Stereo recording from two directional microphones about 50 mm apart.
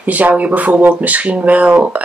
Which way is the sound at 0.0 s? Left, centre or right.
Right.